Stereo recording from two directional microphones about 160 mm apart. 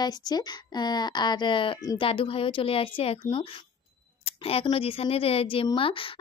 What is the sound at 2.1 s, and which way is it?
Speech, 35° left (ahead or behind).